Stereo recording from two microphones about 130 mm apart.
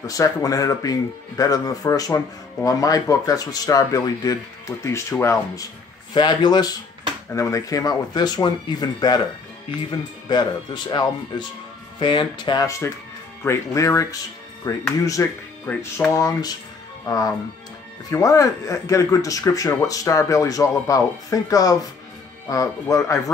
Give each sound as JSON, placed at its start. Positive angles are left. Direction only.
{"t": 0.0, "sound": "speech", "side_deg": 25}
{"t": 6.1, "sound": "speech", "side_deg": 35}
{"t": 10.2, "sound": "speech", "side_deg": 35}
{"t": 16.1, "sound": "speech", "side_deg": 25}